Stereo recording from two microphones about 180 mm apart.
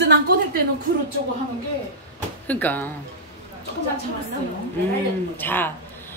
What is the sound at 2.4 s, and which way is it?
Speech, 10° left (ahead or behind).